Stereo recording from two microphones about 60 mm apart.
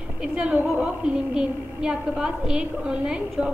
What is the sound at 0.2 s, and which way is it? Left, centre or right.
A woman's voice, centre.